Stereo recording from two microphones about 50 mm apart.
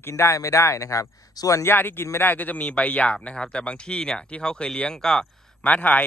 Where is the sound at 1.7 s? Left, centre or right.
Left.